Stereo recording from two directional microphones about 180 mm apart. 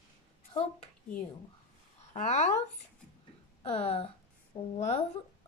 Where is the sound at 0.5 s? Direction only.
25° left (ahead or behind).